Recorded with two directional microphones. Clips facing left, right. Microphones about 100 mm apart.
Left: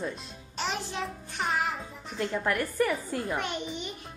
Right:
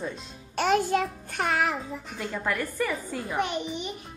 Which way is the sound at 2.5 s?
15° left (ahead or behind).